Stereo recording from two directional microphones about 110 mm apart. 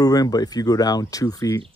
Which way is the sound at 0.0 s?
35° left (ahead or behind).